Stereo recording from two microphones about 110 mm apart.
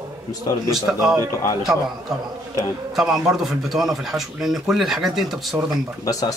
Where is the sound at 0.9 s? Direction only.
10° right (ahead or behind).